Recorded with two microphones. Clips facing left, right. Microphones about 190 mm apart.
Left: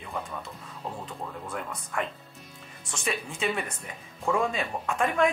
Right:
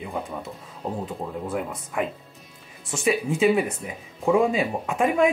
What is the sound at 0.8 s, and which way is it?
Speech, 40° right (ahead or behind).